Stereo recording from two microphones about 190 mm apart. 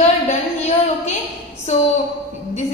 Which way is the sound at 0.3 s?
35° left (ahead or behind).